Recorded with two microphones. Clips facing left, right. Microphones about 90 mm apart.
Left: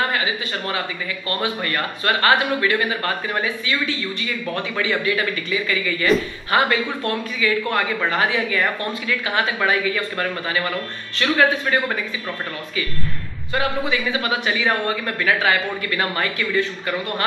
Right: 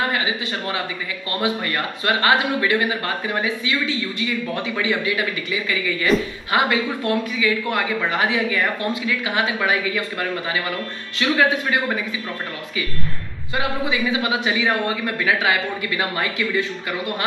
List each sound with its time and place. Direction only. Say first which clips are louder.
0.1 s a sound: even; 20° right (ahead or behind)
1.4 s a man's voice: right 2 dB; 20° right (ahead or behind)
13.6 s a man's voice: even; 15° right (ahead or behind)